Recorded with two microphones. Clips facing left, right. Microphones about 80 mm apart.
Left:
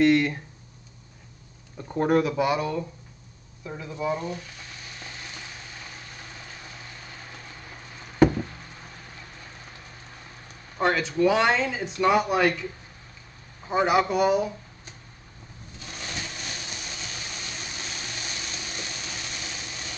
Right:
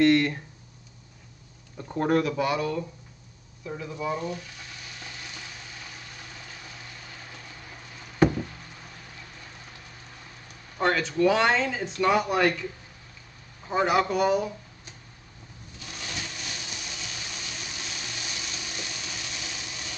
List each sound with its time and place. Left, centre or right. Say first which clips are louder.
0.0 s speech: even; centre
1.8 s speech: left 2 dB; centre; by 4.4 s left
10.8 s speech: left 1 dB; centre
13.7 s speech: left 2 dB; centre
15.8 s a sound: left 1 dB; left